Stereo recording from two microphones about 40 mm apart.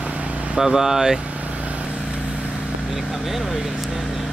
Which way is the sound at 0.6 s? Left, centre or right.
Centre.